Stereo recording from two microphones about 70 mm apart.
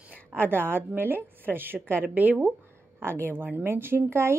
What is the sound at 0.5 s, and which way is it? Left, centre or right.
A woman's voice, right.